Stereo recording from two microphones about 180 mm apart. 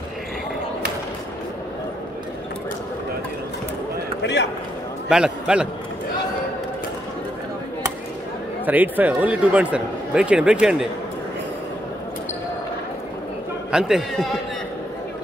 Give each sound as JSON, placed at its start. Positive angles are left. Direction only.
{"t": 4.2, "sound": "a sound", "side_deg": 75}
{"t": 5.1, "sound": "a man's voice", "side_deg": -5}
{"t": 8.6, "sound": "speech", "side_deg": -10}
{"t": 13.7, "sound": "a man's voice", "side_deg": -5}